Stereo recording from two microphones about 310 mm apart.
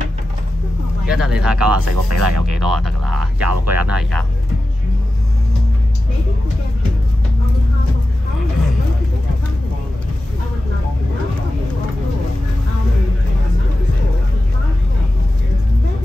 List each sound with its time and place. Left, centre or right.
1.0 s speech: centre
1.9 s speech: right
2.4 s speech: centre
3.4 s speech: right
3.8 s speech: centre